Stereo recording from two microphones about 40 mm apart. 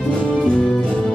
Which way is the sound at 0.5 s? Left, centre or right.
Centre.